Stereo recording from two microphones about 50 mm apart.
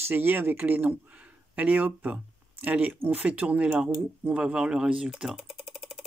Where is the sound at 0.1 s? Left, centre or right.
Right; by 5.1 s centre.